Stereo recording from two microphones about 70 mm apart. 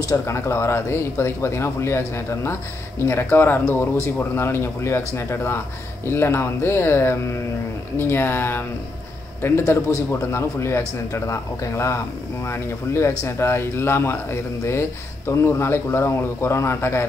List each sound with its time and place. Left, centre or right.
0.1 s speech: left